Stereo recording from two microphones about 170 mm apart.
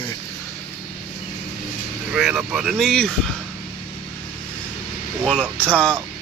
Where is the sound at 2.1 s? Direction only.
5° right (ahead or behind).